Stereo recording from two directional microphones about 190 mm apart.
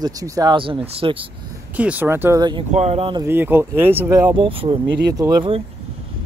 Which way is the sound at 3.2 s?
10° right (ahead or behind).